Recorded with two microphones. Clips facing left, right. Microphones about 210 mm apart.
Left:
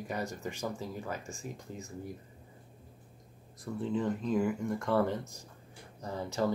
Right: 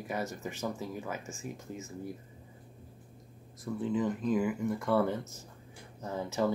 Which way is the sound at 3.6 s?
Centre (ahead or behind).